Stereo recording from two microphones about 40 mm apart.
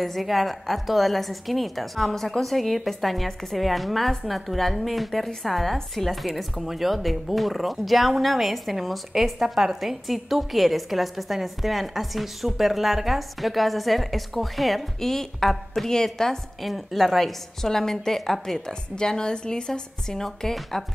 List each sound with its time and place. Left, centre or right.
0.0 s a woman's voice: centre
16.6 s a woman's voice: centre
18.7 s a woman's voice: centre